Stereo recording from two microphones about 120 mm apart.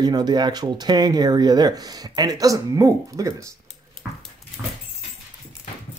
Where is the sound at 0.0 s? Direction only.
35° right (ahead or behind).